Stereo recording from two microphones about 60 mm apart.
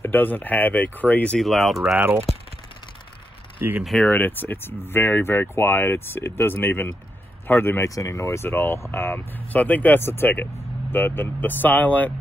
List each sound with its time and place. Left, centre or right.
0.0 s speech: left
1.4 s speech: centre
3.6 s speech: right
4.1 s speech: left
7.8 s speech: left
9.1 s speech: left